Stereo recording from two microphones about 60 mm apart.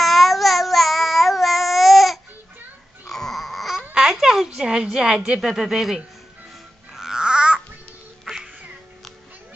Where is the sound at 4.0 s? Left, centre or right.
Centre.